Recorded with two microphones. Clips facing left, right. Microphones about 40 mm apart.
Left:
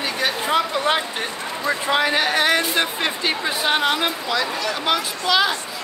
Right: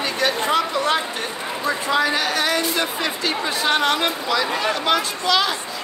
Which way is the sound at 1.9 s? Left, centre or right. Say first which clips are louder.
Left 2 dB; left.